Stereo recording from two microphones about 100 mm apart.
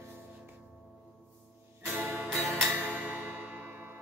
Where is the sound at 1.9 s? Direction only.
25° right (ahead or behind).